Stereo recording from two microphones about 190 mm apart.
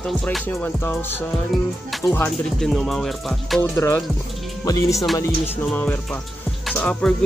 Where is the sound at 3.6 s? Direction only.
15° left (ahead or behind).